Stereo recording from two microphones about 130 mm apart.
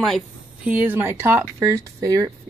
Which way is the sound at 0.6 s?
15° right (ahead or behind).